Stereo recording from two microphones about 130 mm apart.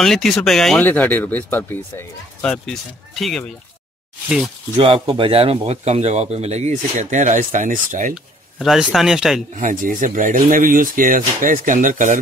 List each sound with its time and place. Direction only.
0.0 s speech: 5° left (ahead or behind)
4.7 s speech: 45° right (ahead or behind); by 8.1 s 80° right
8.5 s speech: centre (ahead or behind)
9.6 s speech: 90° right